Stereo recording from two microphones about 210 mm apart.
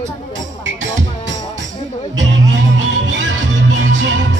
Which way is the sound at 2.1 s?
60° right (ahead or behind).